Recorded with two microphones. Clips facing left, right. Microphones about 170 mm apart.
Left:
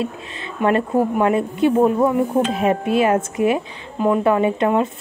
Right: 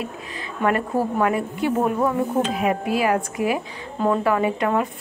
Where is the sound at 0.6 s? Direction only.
25° left (ahead or behind).